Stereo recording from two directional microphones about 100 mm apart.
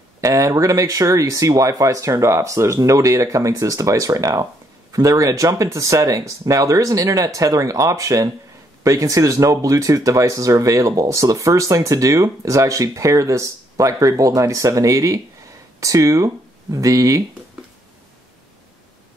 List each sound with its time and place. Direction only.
0.2 s speech: 35° right (ahead or behind)